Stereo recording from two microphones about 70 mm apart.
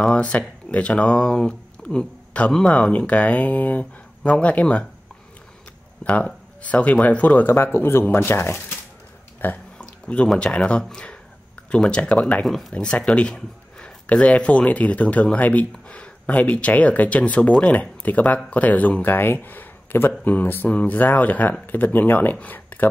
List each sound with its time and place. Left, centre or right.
0.0 s speech: centre
6.0 s speech: centre
9.8 s a sound: centre
10.4 s speech: centre
12.4 s speech: centre
12.7 s speech: centre